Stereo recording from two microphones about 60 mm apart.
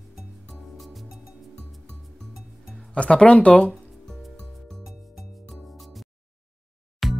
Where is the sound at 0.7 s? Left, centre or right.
Centre.